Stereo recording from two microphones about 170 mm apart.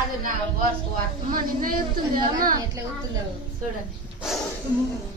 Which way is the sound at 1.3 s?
55° right (ahead or behind).